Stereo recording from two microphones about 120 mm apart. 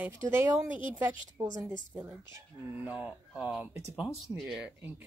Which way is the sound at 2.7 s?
15° right (ahead or behind).